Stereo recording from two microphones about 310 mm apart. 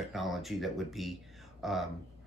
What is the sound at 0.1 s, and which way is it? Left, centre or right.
Speech, centre.